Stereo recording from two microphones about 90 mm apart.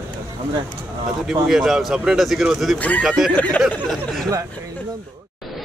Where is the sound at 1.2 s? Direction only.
5° right (ahead or behind).